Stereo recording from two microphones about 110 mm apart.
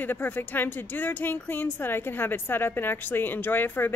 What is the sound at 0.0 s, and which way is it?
A woman's voice, 15° left (ahead or behind).